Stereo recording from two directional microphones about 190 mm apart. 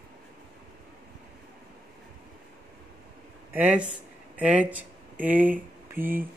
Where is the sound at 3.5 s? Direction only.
10° right (ahead or behind).